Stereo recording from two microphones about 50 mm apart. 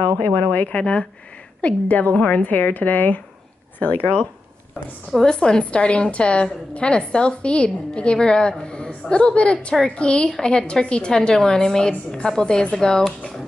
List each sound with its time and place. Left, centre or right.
0.0 s a woman's voice: left
5.2 s a woman's voice: centre